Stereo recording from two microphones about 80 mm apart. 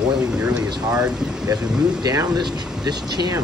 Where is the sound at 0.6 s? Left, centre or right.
Right.